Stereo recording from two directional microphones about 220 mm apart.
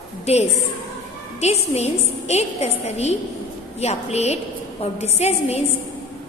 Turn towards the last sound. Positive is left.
turn(degrees=30)  # may be behind; listen again after turning